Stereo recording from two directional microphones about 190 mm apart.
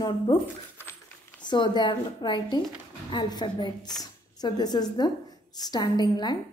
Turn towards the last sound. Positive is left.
turn(degrees=20)  # may be behind; listen again after turning